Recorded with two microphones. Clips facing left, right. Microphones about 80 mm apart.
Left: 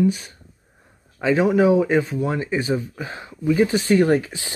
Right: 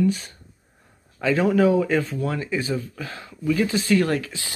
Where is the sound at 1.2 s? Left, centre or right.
Centre.